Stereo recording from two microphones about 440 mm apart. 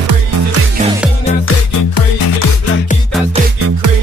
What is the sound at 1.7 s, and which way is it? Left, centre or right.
Music, left.